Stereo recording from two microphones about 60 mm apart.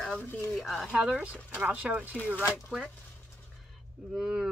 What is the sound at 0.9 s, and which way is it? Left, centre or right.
A woman's voice, centre.